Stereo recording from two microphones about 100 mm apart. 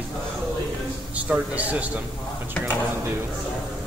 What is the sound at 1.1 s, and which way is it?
Speech, 15° right (ahead or behind).